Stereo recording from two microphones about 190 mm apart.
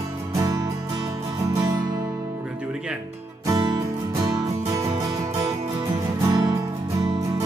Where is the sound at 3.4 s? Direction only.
20° right (ahead or behind).